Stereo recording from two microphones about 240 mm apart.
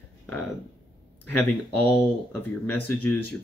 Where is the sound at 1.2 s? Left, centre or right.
Centre.